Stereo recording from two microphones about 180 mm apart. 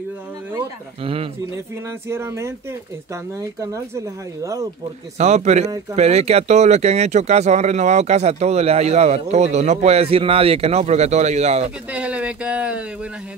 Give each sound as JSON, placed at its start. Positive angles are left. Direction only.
{"t": 1.0, "sound": "speech", "side_deg": -30}
{"t": 2.0, "sound": "speech", "side_deg": -15}
{"t": 5.1, "sound": "speech", "side_deg": -40}
{"t": 11.9, "sound": "speech", "side_deg": -5}